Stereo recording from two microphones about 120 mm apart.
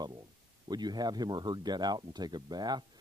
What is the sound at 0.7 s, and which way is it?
Speech, 35° right (ahead or behind).